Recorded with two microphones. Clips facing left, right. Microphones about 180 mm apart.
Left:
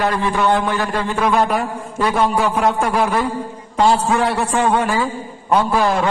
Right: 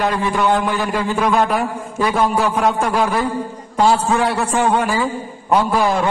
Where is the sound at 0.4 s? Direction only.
Centre (ahead or behind).